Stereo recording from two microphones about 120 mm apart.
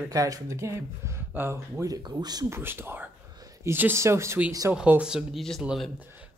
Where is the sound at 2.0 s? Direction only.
35° right (ahead or behind).